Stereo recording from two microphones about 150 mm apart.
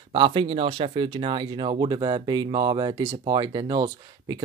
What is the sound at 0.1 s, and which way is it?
Speech, 35° right (ahead or behind).